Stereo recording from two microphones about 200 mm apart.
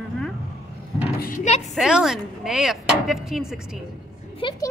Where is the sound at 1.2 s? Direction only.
40° left (ahead or behind).